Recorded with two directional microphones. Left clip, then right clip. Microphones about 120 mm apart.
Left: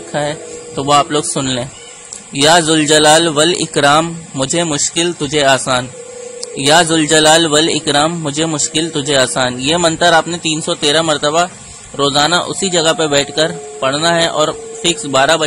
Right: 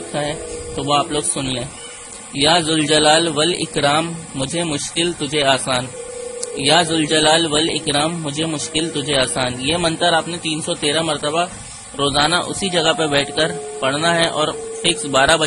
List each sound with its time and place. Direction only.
0.1 s speech: 30° left (ahead or behind)